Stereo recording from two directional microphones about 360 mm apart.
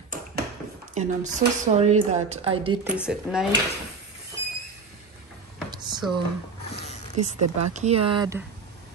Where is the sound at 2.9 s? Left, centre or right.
Centre.